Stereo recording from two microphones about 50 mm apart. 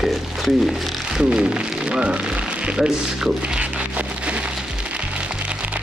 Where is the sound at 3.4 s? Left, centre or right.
Right.